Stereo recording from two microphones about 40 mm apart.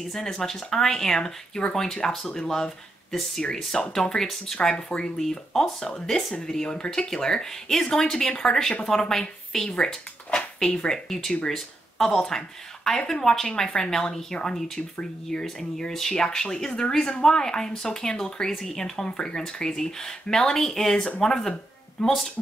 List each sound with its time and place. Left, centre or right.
0.1 s speech: centre
4.7 s speech: left
5.2 s speech: centre